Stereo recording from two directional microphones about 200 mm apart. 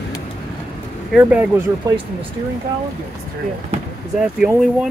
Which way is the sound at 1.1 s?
5° right (ahead or behind).